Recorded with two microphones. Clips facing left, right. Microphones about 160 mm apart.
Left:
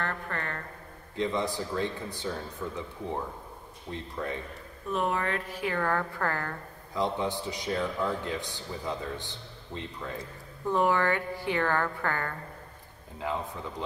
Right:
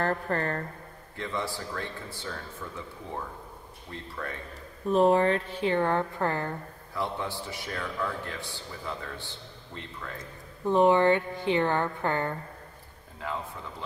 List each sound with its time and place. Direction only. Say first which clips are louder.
0.0 s speech: right 6 dB; 35° right (ahead or behind)
1.1 s speech: left 4 dB; 20° left (ahead or behind)
4.1 s speech: left 3 dB; 20° left (ahead or behind)
4.8 s a woman's voice: right 8 dB; 30° right (ahead or behind)
7.0 s speech: left 3 dB; 20° left (ahead or behind)
10.6 s a woman's voice: right 5 dB; 20° right (ahead or behind)
13.2 s speech: left 2 dB; 20° left (ahead or behind)